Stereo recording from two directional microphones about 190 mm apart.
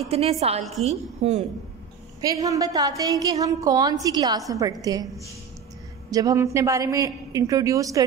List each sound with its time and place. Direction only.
0.1 s a woman's voice: 35° right (ahead or behind)
0.7 s a woman's voice: centre (ahead or behind)
1.2 s a woman's voice: 35° right (ahead or behind)
2.2 s a woman's voice: 20° right (ahead or behind)